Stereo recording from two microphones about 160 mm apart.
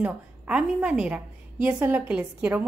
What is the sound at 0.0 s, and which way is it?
A woman's voice, 5° right (ahead or behind).